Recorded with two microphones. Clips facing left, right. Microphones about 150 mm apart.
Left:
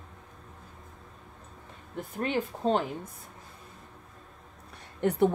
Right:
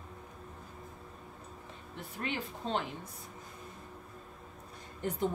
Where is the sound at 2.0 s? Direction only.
45° left (ahead or behind).